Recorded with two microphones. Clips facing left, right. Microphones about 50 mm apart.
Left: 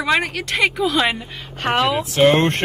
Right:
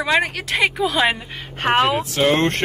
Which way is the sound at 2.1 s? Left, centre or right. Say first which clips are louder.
Left 6 dB; left.